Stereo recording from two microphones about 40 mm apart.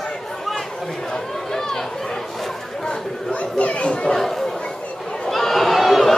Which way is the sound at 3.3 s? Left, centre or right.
Left.